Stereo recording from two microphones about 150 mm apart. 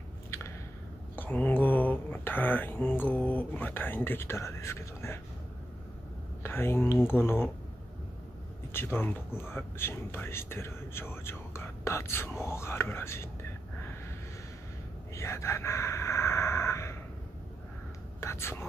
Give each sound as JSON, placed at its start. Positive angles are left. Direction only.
{"t": 1.1, "sound": "speech", "side_deg": 10}
{"t": 6.4, "sound": "speech", "side_deg": 15}
{"t": 8.7, "sound": "speech", "side_deg": 15}
{"t": 15.1, "sound": "a sound", "side_deg": 20}
{"t": 18.2, "sound": "whispering", "side_deg": 15}